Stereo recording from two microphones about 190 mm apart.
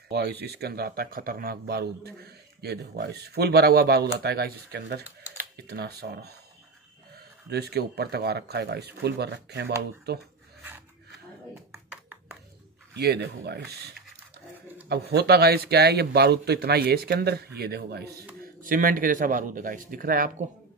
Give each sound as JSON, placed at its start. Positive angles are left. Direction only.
{"t": 0.1, "sound": "speech", "side_deg": -60}
{"t": 7.4, "sound": "speech", "side_deg": -60}
{"t": 11.7, "sound": "a sound", "side_deg": 0}
{"t": 12.9, "sound": "speech", "side_deg": -60}
{"t": 18.4, "sound": "a man's voice", "side_deg": -45}